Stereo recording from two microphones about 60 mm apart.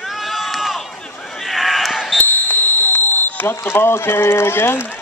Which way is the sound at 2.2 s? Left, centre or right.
Left.